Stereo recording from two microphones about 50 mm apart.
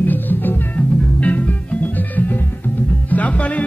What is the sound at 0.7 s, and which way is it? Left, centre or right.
Music, left.